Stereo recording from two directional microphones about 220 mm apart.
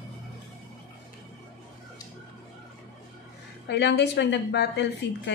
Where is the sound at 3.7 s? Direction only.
50° left (ahead or behind).